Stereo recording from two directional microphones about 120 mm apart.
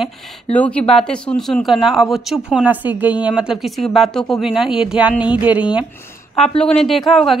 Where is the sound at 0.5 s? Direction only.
10° left (ahead or behind).